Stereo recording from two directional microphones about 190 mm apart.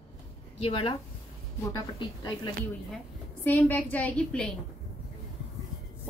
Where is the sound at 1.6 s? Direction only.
20° left (ahead or behind).